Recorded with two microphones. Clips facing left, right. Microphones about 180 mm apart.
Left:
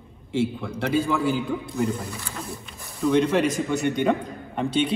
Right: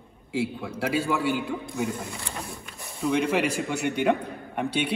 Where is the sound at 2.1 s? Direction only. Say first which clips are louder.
Left 1 dB; 30° right (ahead or behind).